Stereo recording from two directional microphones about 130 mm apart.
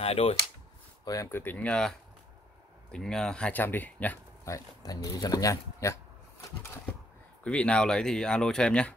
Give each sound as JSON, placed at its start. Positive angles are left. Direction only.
{"t": 0.0, "sound": "speech", "side_deg": 50}
{"t": 1.0, "sound": "speech", "side_deg": 25}
{"t": 1.4, "sound": "speech", "side_deg": 10}
{"t": 4.5, "sound": "speech", "side_deg": 25}
{"t": 7.4, "sound": "speech", "side_deg": 10}